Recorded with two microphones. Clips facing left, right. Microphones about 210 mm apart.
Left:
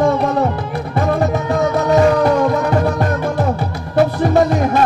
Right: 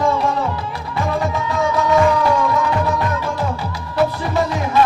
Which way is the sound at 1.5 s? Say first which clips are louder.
Left 2 dB; 45° left (ahead or behind).